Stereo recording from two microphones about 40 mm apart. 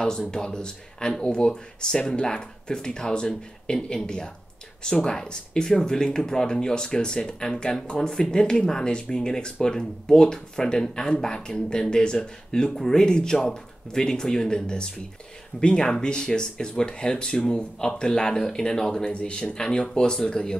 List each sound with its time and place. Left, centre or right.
0.3 s speech: centre